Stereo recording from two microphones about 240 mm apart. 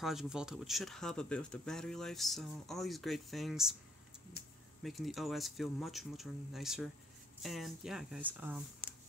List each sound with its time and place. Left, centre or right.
0.0 s speech: centre
4.4 s a sound: left
4.8 s speech: centre